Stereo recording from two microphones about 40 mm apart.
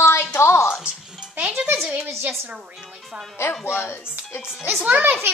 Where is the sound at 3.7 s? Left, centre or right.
Left.